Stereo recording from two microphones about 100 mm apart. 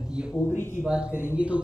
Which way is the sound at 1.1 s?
25° left (ahead or behind).